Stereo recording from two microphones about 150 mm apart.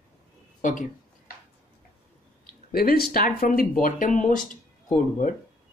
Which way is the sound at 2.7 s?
80° left.